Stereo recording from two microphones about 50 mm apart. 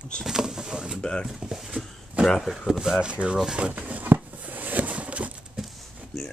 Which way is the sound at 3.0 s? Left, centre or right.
Right.